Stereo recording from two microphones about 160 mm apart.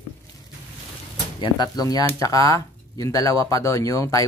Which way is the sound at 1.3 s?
25° left (ahead or behind).